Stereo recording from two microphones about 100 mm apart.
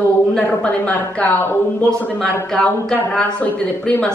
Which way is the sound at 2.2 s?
10° left (ahead or behind).